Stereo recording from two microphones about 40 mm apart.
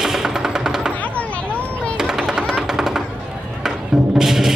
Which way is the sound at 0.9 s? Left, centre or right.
Left.